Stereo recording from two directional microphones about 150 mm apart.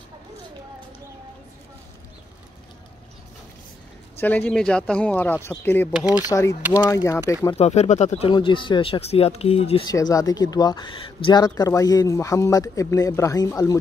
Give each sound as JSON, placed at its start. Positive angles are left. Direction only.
{"t": 4.2, "sound": "speech", "side_deg": 10}
{"t": 5.9, "sound": "speech", "side_deg": -5}
{"t": 6.2, "sound": "speech", "side_deg": 20}
{"t": 7.5, "sound": "speech", "side_deg": 45}
{"t": 8.3, "sound": "speech", "side_deg": 35}
{"t": 9.8, "sound": "speech", "side_deg": 25}